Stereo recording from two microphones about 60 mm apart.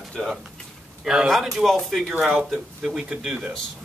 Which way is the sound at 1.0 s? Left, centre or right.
Centre.